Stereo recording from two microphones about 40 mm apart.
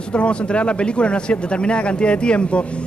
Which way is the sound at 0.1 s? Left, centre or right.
Left.